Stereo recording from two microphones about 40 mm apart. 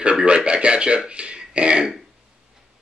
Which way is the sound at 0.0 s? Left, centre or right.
Right.